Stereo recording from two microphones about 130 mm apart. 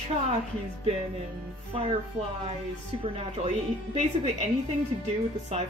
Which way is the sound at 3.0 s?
55° right (ahead or behind).